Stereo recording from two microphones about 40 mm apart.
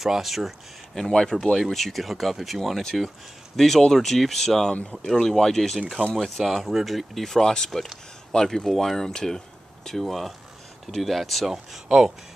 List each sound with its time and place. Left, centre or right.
0.0 s speech: centre
0.9 s speech: centre
7.3 s speech: centre
11.5 s speech: centre